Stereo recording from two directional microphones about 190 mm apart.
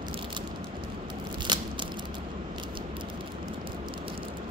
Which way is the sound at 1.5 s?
25° right (ahead or behind).